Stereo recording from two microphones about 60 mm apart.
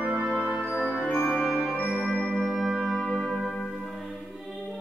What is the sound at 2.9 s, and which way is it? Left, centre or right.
Music, centre.